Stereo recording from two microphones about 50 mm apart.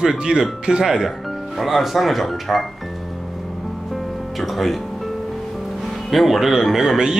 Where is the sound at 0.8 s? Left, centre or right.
Centre.